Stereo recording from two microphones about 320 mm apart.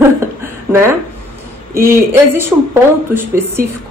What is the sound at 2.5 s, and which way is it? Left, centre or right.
A woman's voice, centre.